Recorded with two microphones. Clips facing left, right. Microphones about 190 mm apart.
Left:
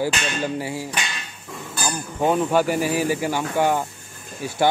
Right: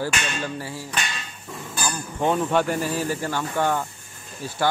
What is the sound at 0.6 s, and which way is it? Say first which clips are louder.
Speech: left 4 dB; 15° left (ahead or behind).